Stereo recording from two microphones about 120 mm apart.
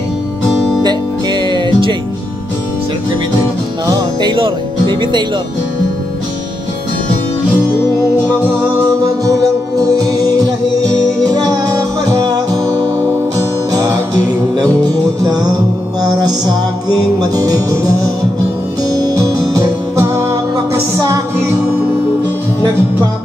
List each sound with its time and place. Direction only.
0.8 s music: 40° right (ahead or behind)
3.8 s music: 35° right (ahead or behind)
9.0 s music: 30° right (ahead or behind)